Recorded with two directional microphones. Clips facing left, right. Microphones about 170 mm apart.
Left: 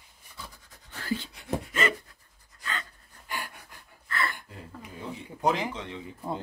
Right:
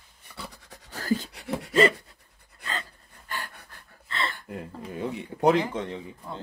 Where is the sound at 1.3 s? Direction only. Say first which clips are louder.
Even; 75° right (ahead or behind).